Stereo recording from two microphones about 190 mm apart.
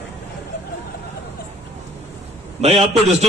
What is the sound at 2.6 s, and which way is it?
Speech, 35° right (ahead or behind).